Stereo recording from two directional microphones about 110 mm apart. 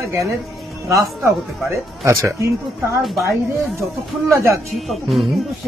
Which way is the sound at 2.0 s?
25° right (ahead or behind).